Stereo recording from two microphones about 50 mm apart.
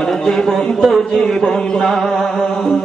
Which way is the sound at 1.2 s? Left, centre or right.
Centre.